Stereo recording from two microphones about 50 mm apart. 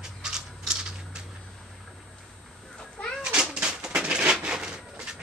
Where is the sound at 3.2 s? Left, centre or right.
Centre.